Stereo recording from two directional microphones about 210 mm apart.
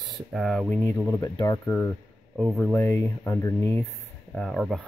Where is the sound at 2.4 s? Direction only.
5° left (ahead or behind).